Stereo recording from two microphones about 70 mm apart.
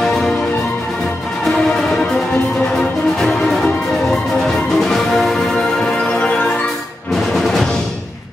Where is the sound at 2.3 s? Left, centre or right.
Left.